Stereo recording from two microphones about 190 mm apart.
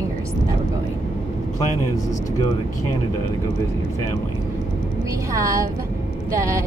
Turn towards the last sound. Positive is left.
turn(degrees=-15)  # may be behind; listen again after turning